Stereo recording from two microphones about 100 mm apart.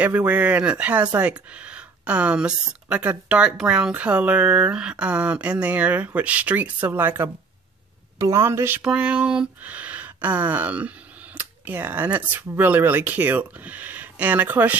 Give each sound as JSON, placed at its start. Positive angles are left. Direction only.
{"t": 0.0, "sound": "a woman's voice", "side_deg": -15}
{"t": 8.8, "sound": "speech", "side_deg": -10}